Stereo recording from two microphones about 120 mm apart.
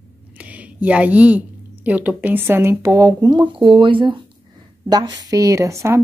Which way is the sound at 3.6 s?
45° right (ahead or behind).